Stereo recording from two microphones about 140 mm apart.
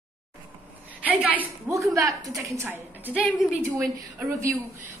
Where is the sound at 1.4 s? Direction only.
20° right (ahead or behind).